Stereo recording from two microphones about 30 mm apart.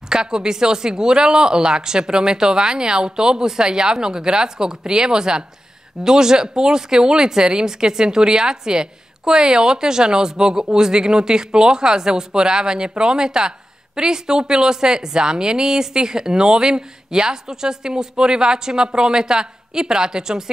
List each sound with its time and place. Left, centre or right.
0.1 s speech: right